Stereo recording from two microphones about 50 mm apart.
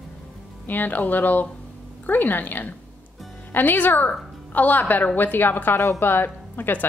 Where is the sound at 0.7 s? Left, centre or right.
Left.